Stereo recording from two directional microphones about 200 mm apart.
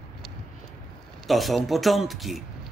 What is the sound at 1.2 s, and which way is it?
Speech, centre (ahead or behind).